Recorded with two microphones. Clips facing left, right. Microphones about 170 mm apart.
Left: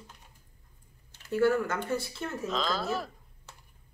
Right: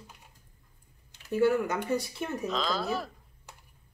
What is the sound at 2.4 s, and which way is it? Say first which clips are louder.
Speech: left 1 dB; centre (ahead or behind).